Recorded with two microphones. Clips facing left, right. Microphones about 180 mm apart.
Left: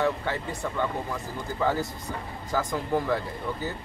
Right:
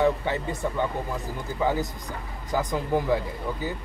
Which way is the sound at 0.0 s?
20° right (ahead or behind).